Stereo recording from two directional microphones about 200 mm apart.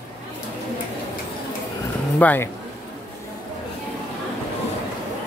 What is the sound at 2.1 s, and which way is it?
Speech, 10° left (ahead or behind).